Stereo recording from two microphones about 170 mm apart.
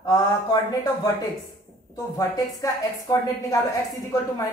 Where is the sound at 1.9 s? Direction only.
20° left (ahead or behind).